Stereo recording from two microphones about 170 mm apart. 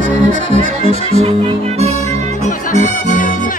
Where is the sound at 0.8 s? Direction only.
40° right (ahead or behind).